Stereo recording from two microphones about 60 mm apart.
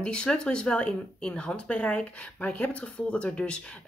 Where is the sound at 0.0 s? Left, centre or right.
Centre.